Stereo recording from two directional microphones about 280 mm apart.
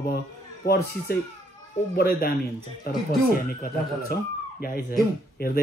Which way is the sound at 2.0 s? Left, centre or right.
Left.